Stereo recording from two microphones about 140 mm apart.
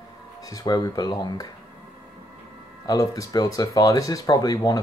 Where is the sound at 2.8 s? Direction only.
25° left (ahead or behind).